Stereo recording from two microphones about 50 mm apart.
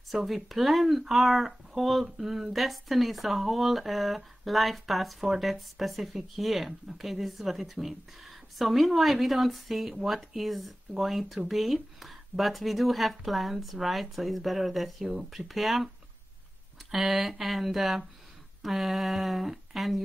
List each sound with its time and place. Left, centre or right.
0.1 s speech: centre
16.9 s speech: centre